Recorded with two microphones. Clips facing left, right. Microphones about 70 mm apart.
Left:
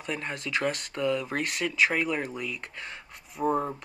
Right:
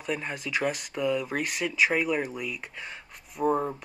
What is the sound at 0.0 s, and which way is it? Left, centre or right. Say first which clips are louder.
Speech: right 1 dB; centre.